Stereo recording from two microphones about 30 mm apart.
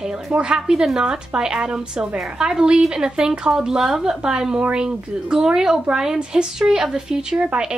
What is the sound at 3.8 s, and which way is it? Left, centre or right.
Speech, centre.